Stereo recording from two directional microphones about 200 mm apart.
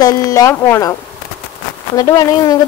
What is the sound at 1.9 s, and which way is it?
Speech, 15° left (ahead or behind).